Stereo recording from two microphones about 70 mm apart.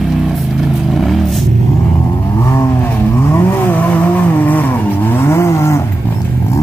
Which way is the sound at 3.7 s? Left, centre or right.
Left.